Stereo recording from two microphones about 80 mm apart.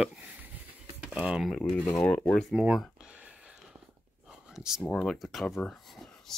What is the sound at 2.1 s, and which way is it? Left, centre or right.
Speech, left.